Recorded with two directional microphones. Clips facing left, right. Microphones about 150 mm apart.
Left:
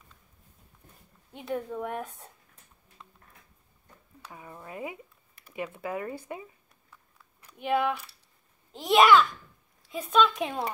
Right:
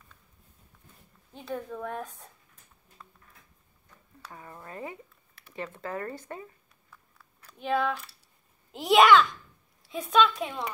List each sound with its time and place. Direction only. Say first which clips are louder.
1.3 s a woman's voice: left 3 dB; 15° left (ahead or behind)
4.3 s speech: left 1 dB; 10° left (ahead or behind)
8.7 s a child's voice: right 1 dB; centre (ahead or behind)